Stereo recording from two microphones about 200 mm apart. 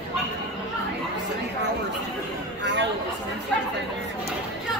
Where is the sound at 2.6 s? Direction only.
60° right (ahead or behind).